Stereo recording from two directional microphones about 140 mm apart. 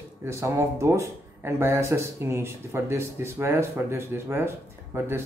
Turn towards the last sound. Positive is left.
turn(degrees=-15)  # may be behind; listen again after turning